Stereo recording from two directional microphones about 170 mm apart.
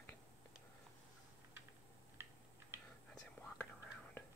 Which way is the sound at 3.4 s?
5° left (ahead or behind).